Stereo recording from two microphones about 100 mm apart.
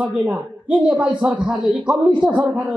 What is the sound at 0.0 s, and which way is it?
A woman's voice, 15° right (ahead or behind).